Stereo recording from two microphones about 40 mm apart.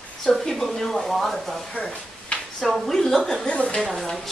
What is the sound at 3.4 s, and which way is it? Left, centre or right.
Speech, left.